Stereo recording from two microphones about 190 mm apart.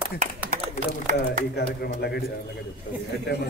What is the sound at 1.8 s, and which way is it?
Speech, 55° left (ahead or behind).